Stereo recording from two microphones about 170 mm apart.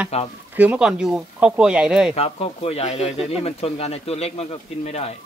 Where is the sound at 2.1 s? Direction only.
35° left (ahead or behind).